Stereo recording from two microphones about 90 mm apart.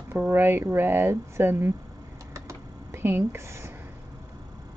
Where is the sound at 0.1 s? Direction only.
25° right (ahead or behind).